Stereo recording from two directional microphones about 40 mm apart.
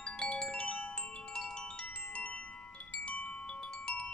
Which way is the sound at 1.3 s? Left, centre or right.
Centre.